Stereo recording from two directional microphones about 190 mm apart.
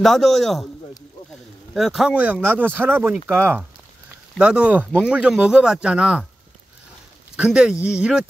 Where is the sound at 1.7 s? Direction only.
Centre (ahead or behind).